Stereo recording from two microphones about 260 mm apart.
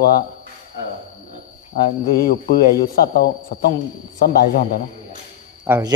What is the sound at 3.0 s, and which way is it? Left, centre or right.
Speech, left.